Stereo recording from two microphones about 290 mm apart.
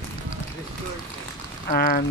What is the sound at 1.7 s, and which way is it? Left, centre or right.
Speech, left.